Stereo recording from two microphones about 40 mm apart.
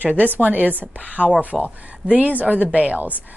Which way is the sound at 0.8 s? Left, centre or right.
Right.